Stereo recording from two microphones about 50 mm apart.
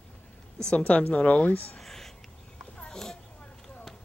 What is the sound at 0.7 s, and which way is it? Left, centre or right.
A woman's voice, left.